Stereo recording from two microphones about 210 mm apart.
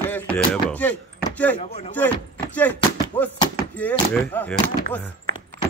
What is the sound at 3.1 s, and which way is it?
Music, 10° left (ahead or behind).